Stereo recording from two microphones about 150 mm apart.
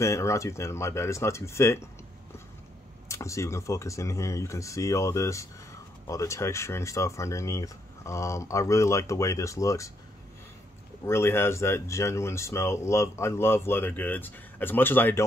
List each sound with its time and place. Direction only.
0.0 s speech: 20° left (ahead or behind)
3.1 s speech: 20° left (ahead or behind)
11.1 s speech: 15° left (ahead or behind)